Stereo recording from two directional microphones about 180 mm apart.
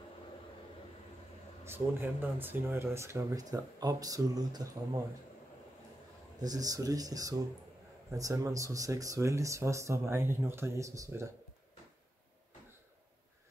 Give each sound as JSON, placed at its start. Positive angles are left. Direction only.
{"t": 1.6, "sound": "speech", "side_deg": -10}
{"t": 6.4, "sound": "speech", "side_deg": -20}